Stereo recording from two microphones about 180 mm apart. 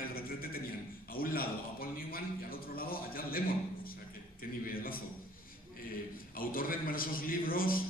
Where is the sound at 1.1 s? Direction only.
55° left (ahead or behind).